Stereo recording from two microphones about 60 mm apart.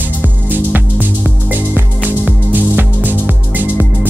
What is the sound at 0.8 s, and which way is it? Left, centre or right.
Music, right.